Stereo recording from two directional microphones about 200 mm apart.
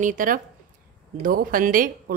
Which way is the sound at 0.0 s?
40° right (ahead or behind).